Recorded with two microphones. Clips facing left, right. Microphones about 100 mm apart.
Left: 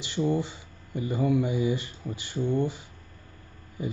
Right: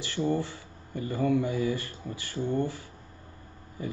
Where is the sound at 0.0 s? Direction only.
15° left (ahead or behind).